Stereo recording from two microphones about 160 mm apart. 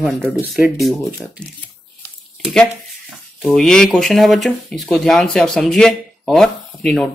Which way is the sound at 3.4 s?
5° left (ahead or behind).